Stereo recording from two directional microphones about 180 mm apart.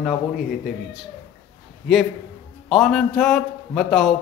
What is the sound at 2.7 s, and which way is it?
A man's voice, centre (ahead or behind).